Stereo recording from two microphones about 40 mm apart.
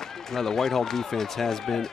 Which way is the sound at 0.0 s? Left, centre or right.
Centre.